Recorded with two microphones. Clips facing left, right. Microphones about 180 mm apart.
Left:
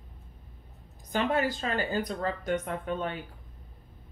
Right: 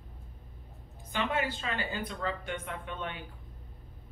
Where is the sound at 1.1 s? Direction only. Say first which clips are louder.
Left 5 dB; 40° left (ahead or behind).